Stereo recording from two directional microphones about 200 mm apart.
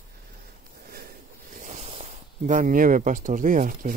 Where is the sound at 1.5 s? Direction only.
40° right (ahead or behind).